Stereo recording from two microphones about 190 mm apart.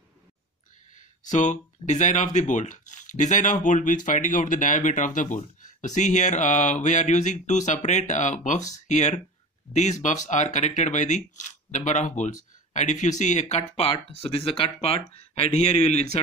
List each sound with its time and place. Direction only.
1.2 s speech: 40° left (ahead or behind)
15.0 s speech: 50° right (ahead or behind)
15.3 s speech: 35° left (ahead or behind)